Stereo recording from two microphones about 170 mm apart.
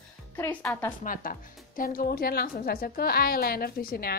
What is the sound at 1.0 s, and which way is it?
A woman's voice, 55° left (ahead or behind).